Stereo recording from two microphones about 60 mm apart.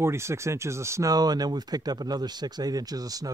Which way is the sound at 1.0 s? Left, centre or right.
Right.